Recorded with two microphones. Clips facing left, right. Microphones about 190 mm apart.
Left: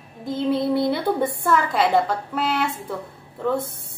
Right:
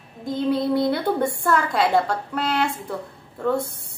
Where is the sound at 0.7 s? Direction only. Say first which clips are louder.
Even; centre (ahead or behind).